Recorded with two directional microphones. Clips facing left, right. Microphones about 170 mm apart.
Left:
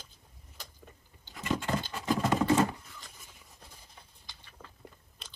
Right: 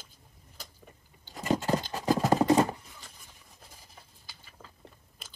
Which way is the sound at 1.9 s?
40° right (ahead or behind).